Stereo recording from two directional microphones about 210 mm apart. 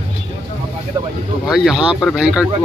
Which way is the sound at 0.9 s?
15° right (ahead or behind).